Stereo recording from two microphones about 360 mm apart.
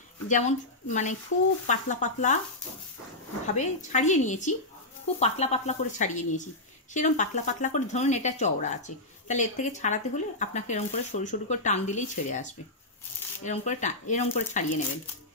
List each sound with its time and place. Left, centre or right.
0.3 s speech: centre
3.4 s speech: centre